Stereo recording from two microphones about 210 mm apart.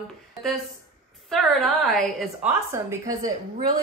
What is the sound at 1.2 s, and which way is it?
A woman's voice, centre (ahead or behind).